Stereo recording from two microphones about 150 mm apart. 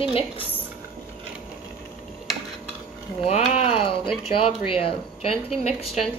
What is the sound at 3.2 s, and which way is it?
Speech, 45° left (ahead or behind).